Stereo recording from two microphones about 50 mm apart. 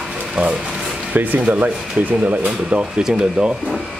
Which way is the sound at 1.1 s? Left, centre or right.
Right.